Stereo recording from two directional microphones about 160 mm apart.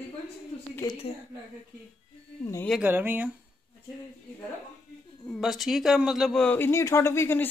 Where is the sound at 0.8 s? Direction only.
20° left (ahead or behind).